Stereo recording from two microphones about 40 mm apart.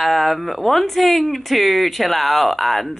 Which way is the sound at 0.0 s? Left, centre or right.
Centre.